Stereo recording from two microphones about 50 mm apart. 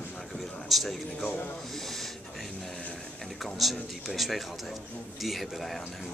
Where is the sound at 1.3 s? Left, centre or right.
Left.